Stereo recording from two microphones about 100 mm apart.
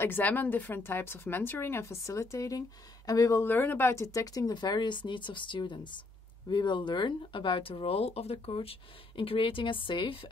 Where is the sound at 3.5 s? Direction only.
20° left (ahead or behind).